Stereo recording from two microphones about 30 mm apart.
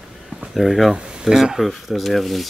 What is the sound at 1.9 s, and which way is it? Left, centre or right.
Speech, centre.